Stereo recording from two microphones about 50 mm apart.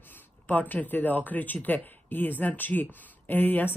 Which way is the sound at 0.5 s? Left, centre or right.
Left.